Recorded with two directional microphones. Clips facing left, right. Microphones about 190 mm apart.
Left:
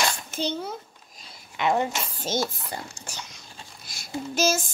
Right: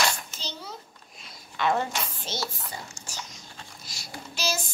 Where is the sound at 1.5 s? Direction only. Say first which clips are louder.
Left 2 dB; 15° left (ahead or behind).